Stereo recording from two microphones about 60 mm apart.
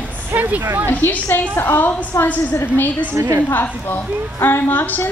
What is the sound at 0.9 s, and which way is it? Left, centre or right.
A woman's voice, left.